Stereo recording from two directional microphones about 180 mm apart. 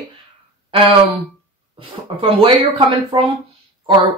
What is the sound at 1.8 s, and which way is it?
Speech, 30° right (ahead or behind).